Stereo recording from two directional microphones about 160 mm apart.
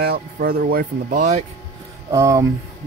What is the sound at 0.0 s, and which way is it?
Speech, 80° right.